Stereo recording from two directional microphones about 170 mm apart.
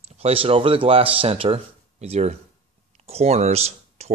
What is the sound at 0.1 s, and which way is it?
Speech, 35° right (ahead or behind).